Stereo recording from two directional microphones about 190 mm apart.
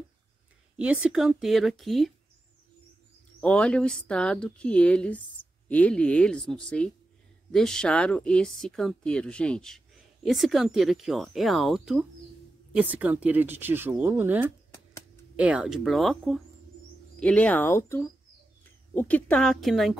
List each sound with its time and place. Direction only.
0.7 s speech: 5° right (ahead or behind)
3.3 s speech: 5° left (ahead or behind)